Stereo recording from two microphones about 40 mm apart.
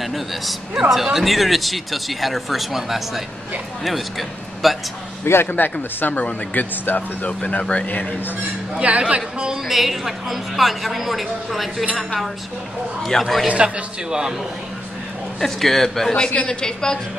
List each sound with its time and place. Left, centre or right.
0.0 s a man's voice: centre
5.2 s a man's voice: left
5.5 s speech: left
8.7 s speech: right
9.7 s speech: centre
13.5 s speech: right
15.4 s a man's voice: centre
16.1 s a woman's voice: left